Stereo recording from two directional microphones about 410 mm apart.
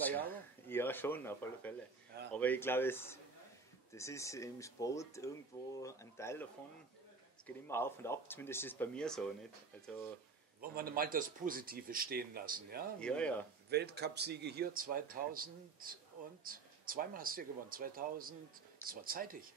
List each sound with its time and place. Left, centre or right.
0.0 s speech: centre
7.4 s speech: centre
10.8 s speech: right
13.0 s speech: centre
13.7 s speech: right